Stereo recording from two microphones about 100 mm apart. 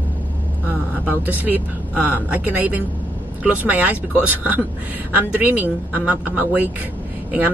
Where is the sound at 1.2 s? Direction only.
15° right (ahead or behind).